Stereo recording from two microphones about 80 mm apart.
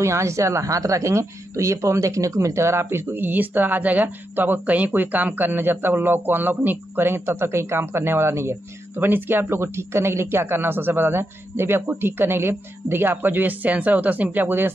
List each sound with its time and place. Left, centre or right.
0.0 s a woman's voice: right